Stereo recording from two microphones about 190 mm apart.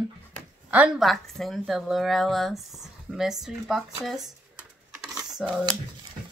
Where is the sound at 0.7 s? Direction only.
5° right (ahead or behind).